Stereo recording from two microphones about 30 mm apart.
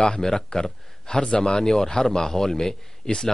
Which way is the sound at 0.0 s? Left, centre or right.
Centre.